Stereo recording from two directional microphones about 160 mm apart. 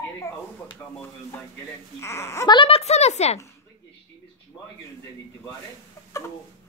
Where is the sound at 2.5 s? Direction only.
35° left (ahead or behind).